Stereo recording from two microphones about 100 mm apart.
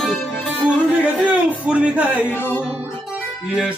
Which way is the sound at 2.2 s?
20° left (ahead or behind).